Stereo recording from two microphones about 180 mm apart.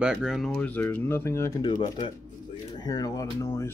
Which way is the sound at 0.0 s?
5° right (ahead or behind).